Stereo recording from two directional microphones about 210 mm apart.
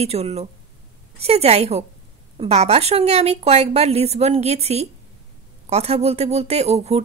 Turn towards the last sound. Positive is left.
turn(degrees=-30)  # may be behind; listen again after turning